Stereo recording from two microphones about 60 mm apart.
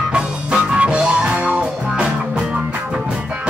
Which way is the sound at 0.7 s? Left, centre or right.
Centre.